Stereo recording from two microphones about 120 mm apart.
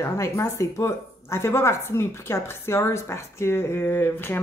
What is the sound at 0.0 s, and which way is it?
Speech, 25° left (ahead or behind).